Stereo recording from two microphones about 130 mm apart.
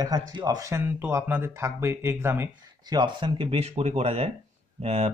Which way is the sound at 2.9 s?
40° right (ahead or behind).